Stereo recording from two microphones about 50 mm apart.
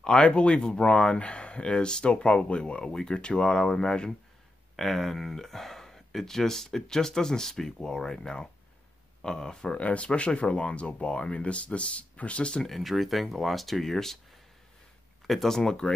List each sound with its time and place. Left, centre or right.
0.0 s speech: left
4.7 s speech: centre
9.8 s speech: left
12.6 s speech: centre
15.2 s speech: centre